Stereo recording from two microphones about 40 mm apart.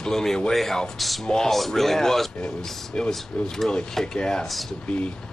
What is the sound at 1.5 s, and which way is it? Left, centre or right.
Speech, centre.